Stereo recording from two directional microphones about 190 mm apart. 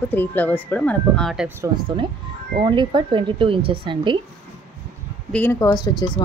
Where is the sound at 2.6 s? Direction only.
25° right (ahead or behind).